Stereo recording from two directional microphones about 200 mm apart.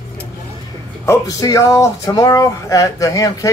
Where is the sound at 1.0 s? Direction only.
15° left (ahead or behind).